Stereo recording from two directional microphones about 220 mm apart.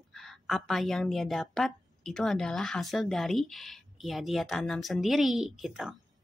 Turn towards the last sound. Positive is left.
turn(degrees=0)  # may be behind; listen again after turning